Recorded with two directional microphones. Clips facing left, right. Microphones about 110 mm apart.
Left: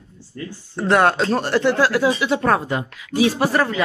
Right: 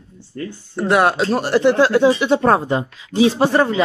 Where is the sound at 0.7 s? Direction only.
5° right (ahead or behind); by 3.8 s 25° right (ahead or behind).